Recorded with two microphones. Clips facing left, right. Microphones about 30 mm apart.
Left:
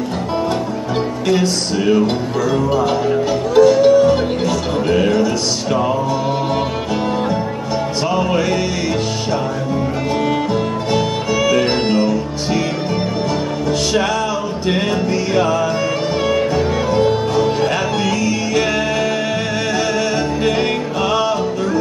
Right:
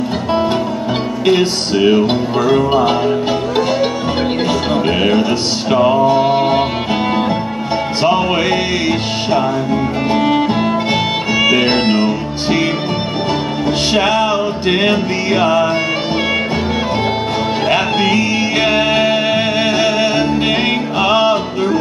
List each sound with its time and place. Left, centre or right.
1.2 s music: right
13.9 s music: right
17.6 s music: right